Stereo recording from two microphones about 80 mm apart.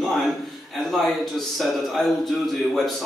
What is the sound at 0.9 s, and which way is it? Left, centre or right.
A man's voice, centre.